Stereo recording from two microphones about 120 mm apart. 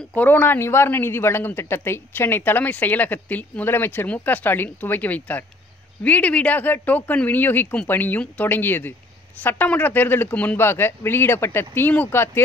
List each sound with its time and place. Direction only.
0.1 s speech: 15° left (ahead or behind)